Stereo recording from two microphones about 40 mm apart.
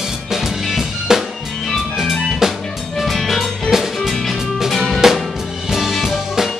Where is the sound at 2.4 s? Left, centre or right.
Centre.